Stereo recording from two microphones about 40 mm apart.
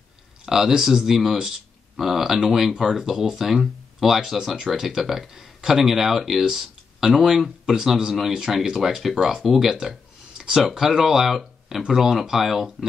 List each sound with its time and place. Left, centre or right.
0.5 s speech: centre